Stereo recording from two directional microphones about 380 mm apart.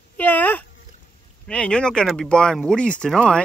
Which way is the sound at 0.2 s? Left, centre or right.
Centre.